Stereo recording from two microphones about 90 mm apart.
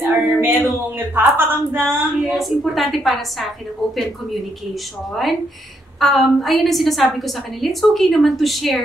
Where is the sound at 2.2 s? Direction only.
Centre (ahead or behind).